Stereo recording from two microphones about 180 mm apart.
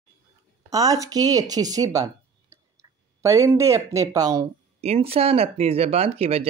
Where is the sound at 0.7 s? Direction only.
20° right (ahead or behind).